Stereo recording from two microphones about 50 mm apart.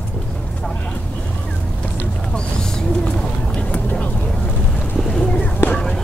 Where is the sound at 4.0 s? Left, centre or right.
Left.